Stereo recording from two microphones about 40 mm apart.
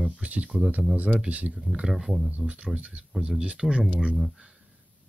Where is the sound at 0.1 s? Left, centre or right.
Right.